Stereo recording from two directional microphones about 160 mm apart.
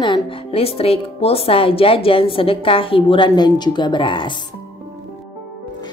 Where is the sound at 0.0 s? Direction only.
35° left (ahead or behind).